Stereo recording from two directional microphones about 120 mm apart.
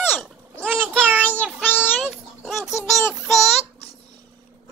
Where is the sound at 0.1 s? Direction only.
5° left (ahead or behind).